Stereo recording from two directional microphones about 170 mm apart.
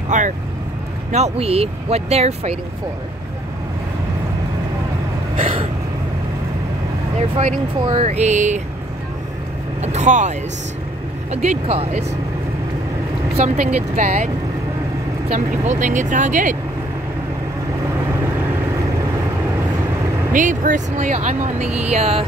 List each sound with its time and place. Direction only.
0.1 s speech: 45° right (ahead or behind)
5.4 s vehicle: 35° right (ahead or behind)
7.2 s speech: 40° right (ahead or behind)
9.8 s speech: 45° right (ahead or behind)
11.4 s speech: 35° right (ahead or behind)
13.9 s speech: 45° right (ahead or behind)
15.3 s speech: 45° right (ahead or behind)
20.3 s speech: 50° right (ahead or behind)
21.6 s speech: 10° right (ahead or behind)
21.9 s speech: 35° right (ahead or behind)